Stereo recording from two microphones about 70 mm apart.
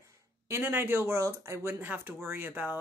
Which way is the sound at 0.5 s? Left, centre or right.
Right.